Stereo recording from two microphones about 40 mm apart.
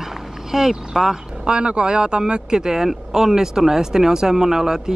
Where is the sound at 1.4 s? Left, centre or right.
Right.